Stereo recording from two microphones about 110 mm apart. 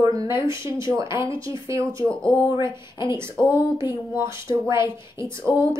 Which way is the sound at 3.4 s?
15° right (ahead or behind).